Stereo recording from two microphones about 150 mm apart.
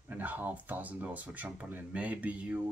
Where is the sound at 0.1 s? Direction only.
10° right (ahead or behind).